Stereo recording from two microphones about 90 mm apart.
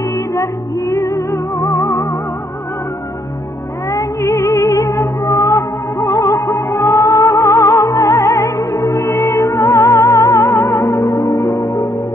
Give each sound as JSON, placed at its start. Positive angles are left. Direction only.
{"t": 0.3, "sound": "music", "side_deg": 40}
{"t": 3.9, "sound": "music", "side_deg": 40}